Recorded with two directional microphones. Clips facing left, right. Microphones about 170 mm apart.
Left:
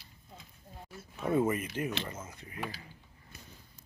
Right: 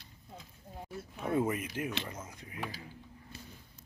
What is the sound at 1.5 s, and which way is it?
Speech, 10° right (ahead or behind).